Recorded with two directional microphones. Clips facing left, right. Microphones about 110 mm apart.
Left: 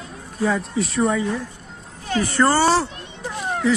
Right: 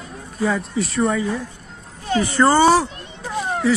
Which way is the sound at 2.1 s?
20° right (ahead or behind).